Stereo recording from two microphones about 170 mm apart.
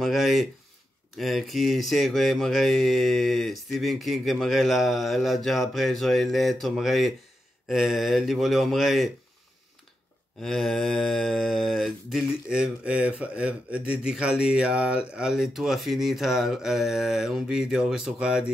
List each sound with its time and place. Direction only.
0.0 s a sound: centre (ahead or behind)
1.1 s mantra: centre (ahead or behind)
10.4 s mantra: centre (ahead or behind)